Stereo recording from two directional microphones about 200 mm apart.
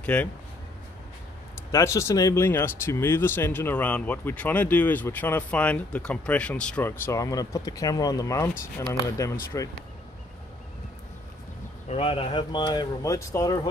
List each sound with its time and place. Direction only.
0.0 s speech: 5° left (ahead or behind)
1.7 s speech: 15° left (ahead or behind)
11.9 s speech: 30° left (ahead or behind)